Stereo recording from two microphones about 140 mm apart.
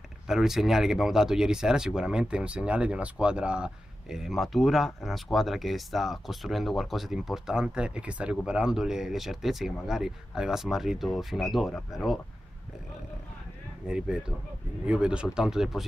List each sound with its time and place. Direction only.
0.3 s speech: centre (ahead or behind)
13.8 s speech: 5° right (ahead or behind)